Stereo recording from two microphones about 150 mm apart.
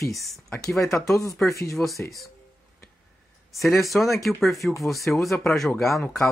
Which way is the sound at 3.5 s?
Centre (ahead or behind).